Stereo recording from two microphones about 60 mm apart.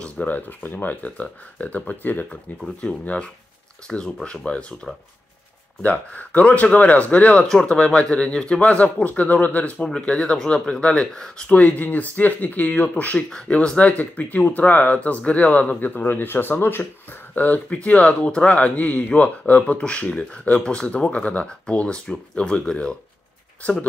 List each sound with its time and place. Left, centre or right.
0.0 s speech: left
5.8 s speech: left
9.8 s speech: centre
11.5 s speech: left